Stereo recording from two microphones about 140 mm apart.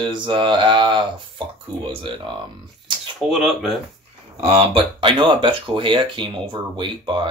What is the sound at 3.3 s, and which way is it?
Speech, 5° right (ahead or behind).